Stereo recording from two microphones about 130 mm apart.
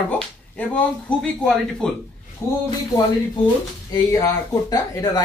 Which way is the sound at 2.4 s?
20° left (ahead or behind).